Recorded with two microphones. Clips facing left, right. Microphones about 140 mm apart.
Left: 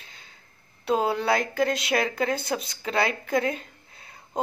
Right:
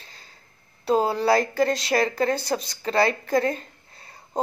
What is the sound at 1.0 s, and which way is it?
A woman's voice, centre (ahead or behind).